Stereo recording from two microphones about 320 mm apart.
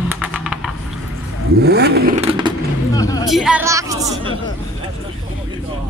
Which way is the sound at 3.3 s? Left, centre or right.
Centre.